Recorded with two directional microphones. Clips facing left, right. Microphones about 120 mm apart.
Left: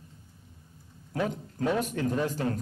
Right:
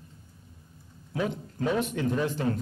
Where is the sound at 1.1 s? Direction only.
40° left (ahead or behind).